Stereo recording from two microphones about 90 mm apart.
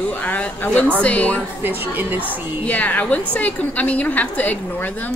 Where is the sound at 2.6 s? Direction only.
15° left (ahead or behind).